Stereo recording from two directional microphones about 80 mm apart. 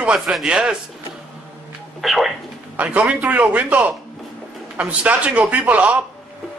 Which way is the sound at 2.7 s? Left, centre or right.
Centre.